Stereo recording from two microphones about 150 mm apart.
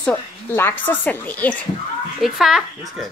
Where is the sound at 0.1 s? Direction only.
15° left (ahead or behind).